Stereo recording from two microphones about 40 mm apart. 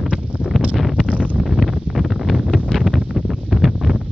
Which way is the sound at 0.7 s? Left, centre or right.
Centre.